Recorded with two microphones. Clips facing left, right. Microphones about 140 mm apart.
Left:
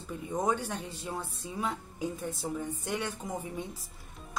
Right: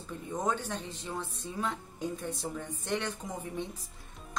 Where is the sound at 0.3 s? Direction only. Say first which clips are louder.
Left 2 dB; 10° left (ahead or behind).